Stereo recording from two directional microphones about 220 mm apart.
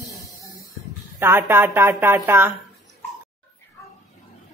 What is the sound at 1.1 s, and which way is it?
Speech, 10° right (ahead or behind).